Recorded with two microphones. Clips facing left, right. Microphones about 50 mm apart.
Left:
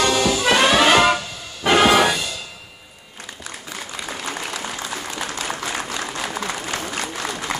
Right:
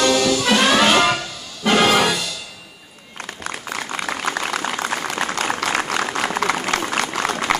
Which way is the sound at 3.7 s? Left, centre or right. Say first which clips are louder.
Right 5 dB; right.